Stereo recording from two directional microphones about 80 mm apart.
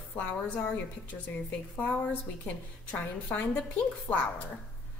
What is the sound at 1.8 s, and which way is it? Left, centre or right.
Speech, centre.